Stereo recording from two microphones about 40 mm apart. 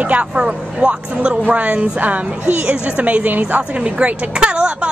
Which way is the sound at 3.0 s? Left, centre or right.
Right.